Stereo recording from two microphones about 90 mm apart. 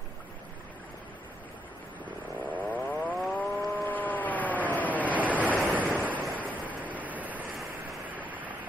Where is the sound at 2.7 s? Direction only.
20° left (ahead or behind).